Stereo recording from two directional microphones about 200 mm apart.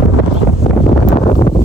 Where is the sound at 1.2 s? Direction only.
30° left (ahead or behind).